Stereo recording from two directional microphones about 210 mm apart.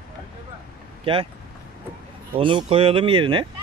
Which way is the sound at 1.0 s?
25° right (ahead or behind).